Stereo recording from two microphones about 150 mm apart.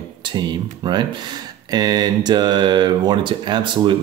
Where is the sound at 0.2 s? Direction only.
30° right (ahead or behind).